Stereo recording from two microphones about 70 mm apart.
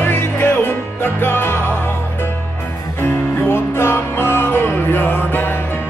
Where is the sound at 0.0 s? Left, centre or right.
Left.